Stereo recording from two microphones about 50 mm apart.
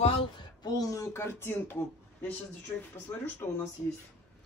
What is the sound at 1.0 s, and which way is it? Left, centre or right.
Speech, left.